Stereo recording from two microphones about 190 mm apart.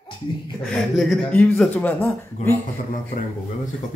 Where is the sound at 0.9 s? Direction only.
Centre (ahead or behind).